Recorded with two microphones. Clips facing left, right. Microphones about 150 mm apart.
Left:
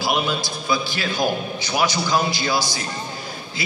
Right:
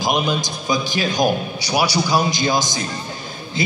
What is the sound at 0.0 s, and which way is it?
A man's voice, 15° right (ahead or behind).